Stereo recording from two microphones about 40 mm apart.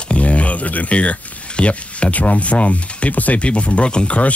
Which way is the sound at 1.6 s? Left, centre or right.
Left.